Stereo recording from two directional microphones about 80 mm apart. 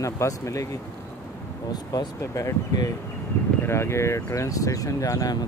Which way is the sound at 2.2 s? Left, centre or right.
Left.